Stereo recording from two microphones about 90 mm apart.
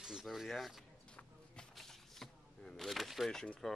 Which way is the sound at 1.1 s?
10° left (ahead or behind).